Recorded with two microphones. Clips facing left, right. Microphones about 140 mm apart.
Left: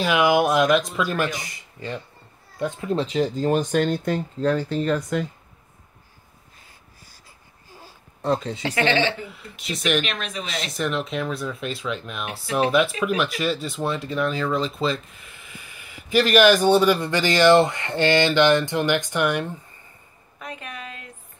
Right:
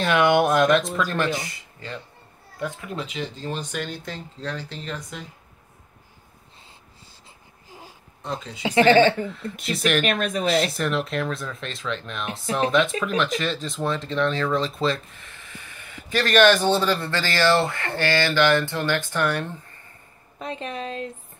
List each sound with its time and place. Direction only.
0.0 s speech: 5° left (ahead or behind)
2.6 s speech: 30° left (ahead or behind); by 5.2 s 50° left (ahead or behind)
8.3 s speech: 45° left (ahead or behind)
8.8 s speech: 50° right (ahead or behind)
9.2 s speech: 5° left (ahead or behind)
10.0 s speech: 50° right (ahead or behind)
10.5 s speech: centre (ahead or behind); by 19.5 s 15° left (ahead or behind)
20.3 s a woman's voice: 30° right (ahead or behind)